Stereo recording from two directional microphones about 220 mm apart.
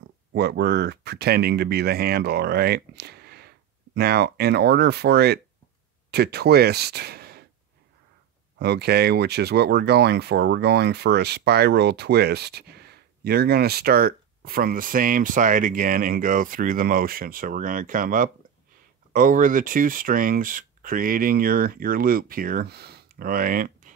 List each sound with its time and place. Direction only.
0.3 s speech: 45° right (ahead or behind)
8.5 s speech: 50° right (ahead or behind)